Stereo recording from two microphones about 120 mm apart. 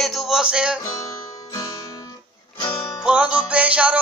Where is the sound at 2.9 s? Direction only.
10° right (ahead or behind).